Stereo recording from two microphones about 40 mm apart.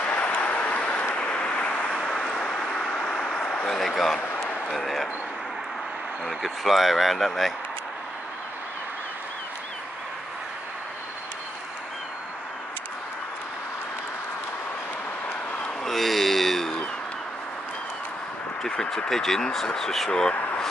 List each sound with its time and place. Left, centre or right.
0.0 s vehicle: left
2.0 s vehicle: centre
3.3 s a sound: left
3.8 s speech: centre
6.2 s speech: centre
15.8 s a sound: centre
18.6 s a sound: centre
19.0 s speech: centre
20.1 s speech: left